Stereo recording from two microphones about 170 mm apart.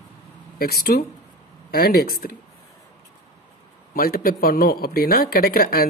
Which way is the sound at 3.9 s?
60° left (ahead or behind).